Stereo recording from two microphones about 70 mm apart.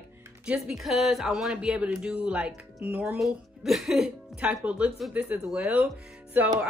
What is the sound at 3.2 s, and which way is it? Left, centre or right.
Speech, centre.